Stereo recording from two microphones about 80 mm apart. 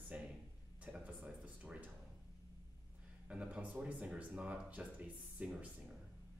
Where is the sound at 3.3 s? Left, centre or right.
Centre.